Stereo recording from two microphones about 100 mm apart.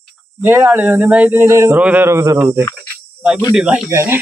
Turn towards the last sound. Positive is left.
turn(degrees=-25)  # may be behind; listen again after turning